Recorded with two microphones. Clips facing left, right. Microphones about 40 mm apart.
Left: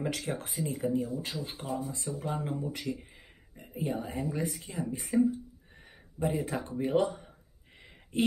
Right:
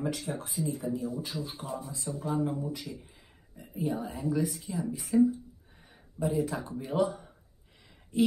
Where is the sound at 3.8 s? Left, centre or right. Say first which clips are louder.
Right 1 dB; left.